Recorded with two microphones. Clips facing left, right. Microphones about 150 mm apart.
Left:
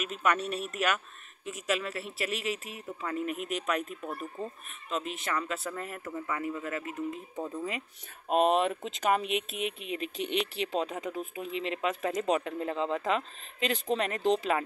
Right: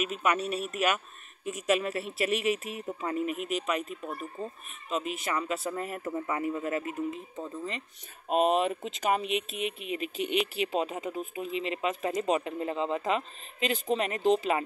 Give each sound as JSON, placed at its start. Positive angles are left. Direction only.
{"t": 0.0, "sound": "speech", "side_deg": -5}
{"t": 3.2, "sound": "speech", "side_deg": -5}
{"t": 7.3, "sound": "speech", "side_deg": 10}
{"t": 8.3, "sound": "speech", "side_deg": 0}